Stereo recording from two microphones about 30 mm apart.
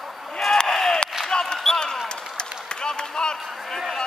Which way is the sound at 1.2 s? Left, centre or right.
Left.